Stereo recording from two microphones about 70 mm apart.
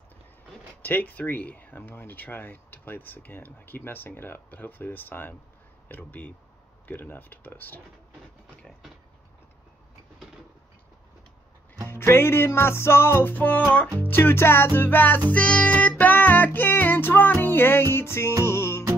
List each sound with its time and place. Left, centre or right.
0.8 s speech: left
11.9 s music: left
14.8 s speech: left
15.2 s speech: centre; by 18.3 s left
18.4 s music: left